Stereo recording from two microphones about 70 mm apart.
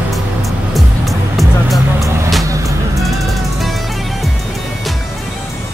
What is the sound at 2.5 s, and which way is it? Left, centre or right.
Music, right.